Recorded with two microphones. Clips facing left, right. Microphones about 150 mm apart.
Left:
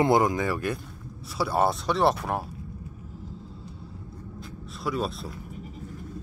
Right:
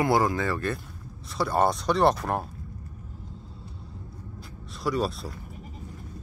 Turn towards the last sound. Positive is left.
turn(degrees=0)  # may be behind; listen again after turning